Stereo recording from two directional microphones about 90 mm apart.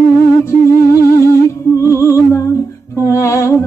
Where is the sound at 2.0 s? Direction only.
35° left (ahead or behind).